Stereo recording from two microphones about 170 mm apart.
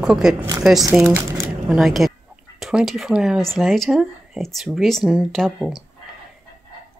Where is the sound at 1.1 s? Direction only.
15° right (ahead or behind).